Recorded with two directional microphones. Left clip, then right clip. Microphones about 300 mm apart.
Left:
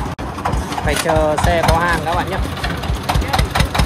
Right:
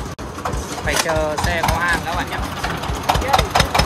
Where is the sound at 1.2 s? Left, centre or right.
Centre.